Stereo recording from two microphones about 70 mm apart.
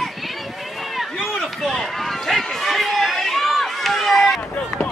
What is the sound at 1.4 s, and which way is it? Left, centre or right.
Run, centre.